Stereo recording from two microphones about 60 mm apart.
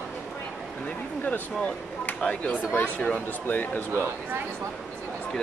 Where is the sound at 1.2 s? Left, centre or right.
Left.